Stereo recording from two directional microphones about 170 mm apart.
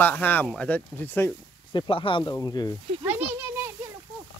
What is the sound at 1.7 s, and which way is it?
Speech, 30° left (ahead or behind).